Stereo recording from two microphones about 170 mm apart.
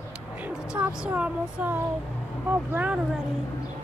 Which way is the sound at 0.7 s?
5° right (ahead or behind).